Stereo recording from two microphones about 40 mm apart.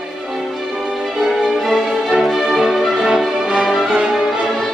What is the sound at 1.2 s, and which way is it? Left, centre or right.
Music, centre.